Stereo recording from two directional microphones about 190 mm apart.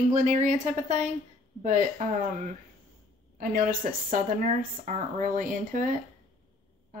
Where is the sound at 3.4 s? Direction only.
45° right (ahead or behind).